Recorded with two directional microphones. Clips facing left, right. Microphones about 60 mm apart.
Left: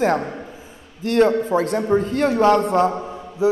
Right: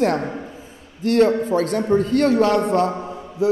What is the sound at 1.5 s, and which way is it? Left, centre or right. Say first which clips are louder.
Speech: even; left.